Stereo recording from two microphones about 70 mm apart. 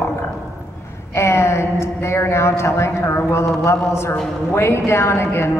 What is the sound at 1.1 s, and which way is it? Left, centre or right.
A man's voice, left.